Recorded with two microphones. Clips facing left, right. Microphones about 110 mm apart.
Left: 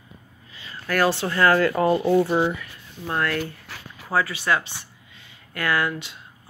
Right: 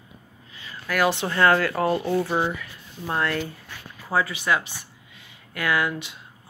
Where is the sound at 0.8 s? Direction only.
10° right (ahead or behind).